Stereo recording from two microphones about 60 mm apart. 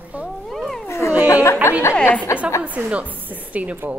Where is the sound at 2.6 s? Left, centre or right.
Right.